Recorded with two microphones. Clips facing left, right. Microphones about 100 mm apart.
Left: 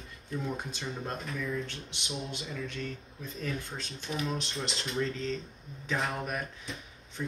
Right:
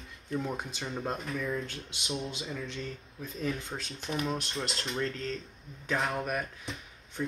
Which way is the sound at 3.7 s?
20° right (ahead or behind).